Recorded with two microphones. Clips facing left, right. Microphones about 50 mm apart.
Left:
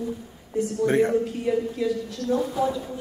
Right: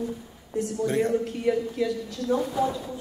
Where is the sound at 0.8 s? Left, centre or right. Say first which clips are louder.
Left 4 dB; left.